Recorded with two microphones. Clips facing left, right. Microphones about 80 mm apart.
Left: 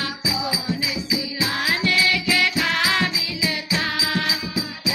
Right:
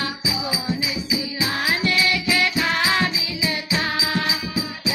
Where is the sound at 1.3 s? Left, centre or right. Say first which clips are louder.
Even; centre.